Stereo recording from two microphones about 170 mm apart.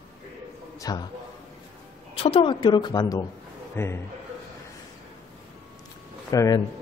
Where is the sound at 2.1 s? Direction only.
30° left (ahead or behind); by 4.0 s 15° left (ahead or behind).